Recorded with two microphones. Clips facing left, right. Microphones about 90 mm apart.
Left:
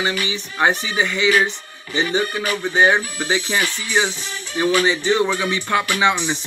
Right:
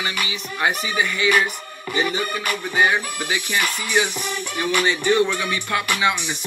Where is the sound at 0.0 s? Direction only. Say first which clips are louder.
Left 4 dB; 30° left (ahead or behind).